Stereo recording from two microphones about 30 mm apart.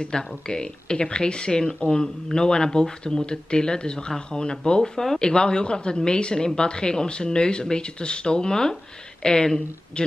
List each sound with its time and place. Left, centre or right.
0.1 s speech: left
1.8 s speech: left
2.3 s speech: left